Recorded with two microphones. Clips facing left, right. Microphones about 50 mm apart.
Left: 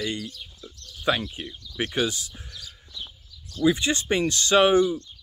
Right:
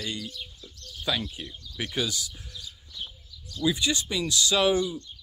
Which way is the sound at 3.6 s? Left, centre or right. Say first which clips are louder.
Left 4 dB; left.